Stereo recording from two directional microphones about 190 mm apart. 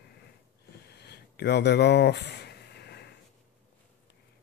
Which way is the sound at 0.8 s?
60° left (ahead or behind).